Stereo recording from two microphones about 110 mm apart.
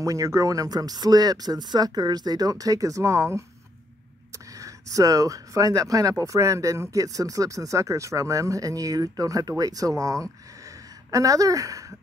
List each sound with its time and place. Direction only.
0.0 s speech: 30° right (ahead or behind)
4.6 s speech: 30° right (ahead or behind)